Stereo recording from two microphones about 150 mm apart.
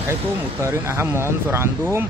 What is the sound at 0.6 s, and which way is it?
Speech, 15° right (ahead or behind).